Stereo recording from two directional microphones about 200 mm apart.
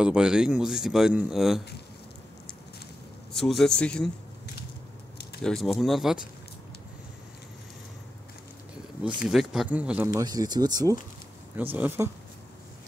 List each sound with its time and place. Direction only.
0.0 s speech: 5° right (ahead or behind)
3.3 s speech: centre (ahead or behind)
5.4 s speech: centre (ahead or behind)
9.2 s speech: 5° right (ahead or behind)
10.0 s speech: 20° right (ahead or behind)
11.5 s speech: 10° right (ahead or behind)